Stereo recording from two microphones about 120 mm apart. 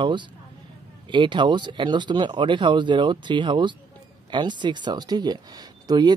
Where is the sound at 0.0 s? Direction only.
40° right (ahead or behind).